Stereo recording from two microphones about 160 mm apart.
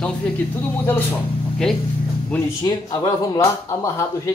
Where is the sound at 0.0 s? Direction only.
10° left (ahead or behind).